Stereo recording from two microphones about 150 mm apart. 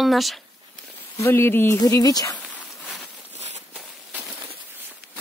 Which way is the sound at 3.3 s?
50° right (ahead or behind).